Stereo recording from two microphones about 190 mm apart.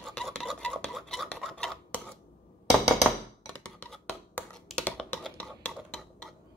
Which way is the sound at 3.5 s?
5° left (ahead or behind).